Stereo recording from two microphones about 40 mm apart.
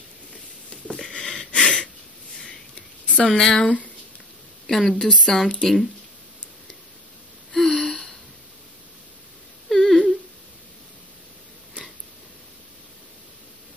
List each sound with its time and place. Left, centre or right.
1.1 s a sound: left
3.3 s speech: centre
3.5 s speech: left
4.6 s speech: centre
7.5 s gasp: centre
9.7 s humming: centre